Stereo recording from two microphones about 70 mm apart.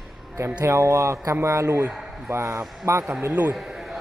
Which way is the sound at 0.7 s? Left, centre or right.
Right.